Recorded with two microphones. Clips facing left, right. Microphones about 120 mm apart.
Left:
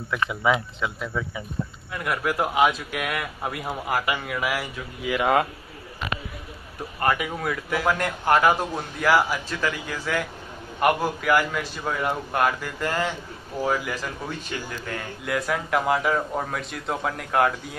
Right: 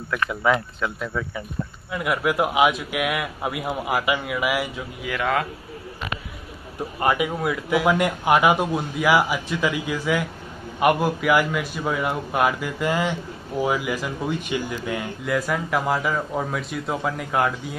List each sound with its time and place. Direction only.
0.5 s speech: 15° left (ahead or behind)
1.9 s a man's voice: 15° right (ahead or behind)
5.2 s a man's voice: 25° left (ahead or behind)
7.0 s a man's voice: 15° right (ahead or behind)
15.2 s a man's voice: centre (ahead or behind)